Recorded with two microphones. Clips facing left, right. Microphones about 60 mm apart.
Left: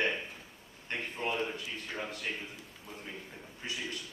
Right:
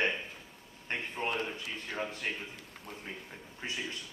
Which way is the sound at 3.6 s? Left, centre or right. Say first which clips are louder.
Right 1 dB; right.